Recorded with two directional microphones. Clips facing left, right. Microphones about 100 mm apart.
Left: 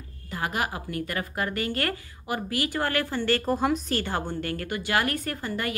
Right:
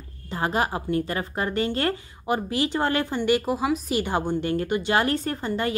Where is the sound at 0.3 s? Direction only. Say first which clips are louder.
Right 4 dB; 30° right (ahead or behind).